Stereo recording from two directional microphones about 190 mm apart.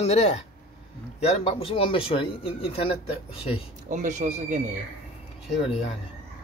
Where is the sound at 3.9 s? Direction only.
40° right (ahead or behind).